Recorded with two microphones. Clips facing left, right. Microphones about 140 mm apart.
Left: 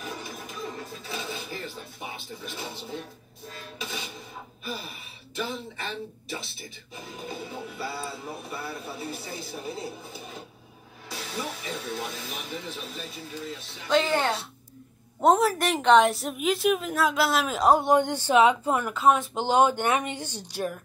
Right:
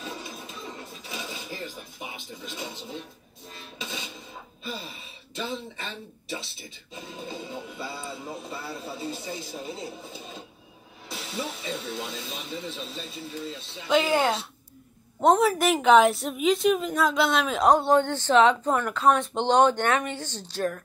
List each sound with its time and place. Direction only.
0.0 s music: 20° right (ahead or behind)
3.5 s a sound: 20° right (ahead or behind)
4.6 s speech: 25° right (ahead or behind)
13.8 s a woman's voice: 5° right (ahead or behind); by 20.8 s 10° left (ahead or behind)